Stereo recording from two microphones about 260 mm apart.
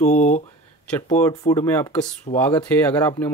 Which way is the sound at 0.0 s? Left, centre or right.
Left.